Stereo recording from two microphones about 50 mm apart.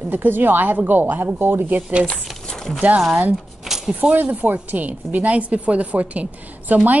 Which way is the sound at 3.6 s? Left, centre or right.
Centre.